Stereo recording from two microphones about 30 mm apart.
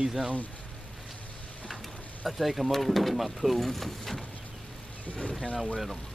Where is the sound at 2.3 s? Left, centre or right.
Centre.